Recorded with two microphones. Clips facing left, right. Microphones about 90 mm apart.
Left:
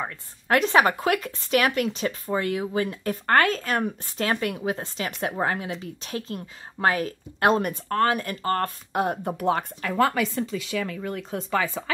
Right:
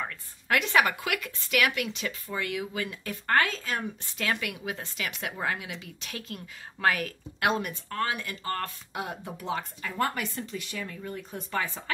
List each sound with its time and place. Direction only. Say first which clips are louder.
0.0 s speech: left 4 dB; 35° left (ahead or behind); by 4.1 s 50° left (ahead or behind)
4.2 s a woman's voice: left 6 dB; 35° left (ahead or behind); by 10.1 s 80° left
10.7 s speech: left 8 dB; 90° left